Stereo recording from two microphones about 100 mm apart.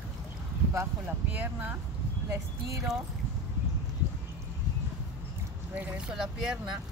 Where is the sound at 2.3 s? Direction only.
30° right (ahead or behind).